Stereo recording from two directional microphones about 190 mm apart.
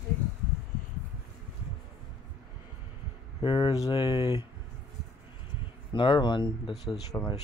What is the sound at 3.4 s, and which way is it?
Speech, 25° left (ahead or behind).